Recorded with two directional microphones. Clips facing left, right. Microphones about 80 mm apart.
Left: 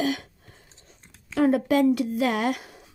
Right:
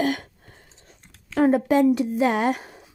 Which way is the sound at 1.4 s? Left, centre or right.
Right.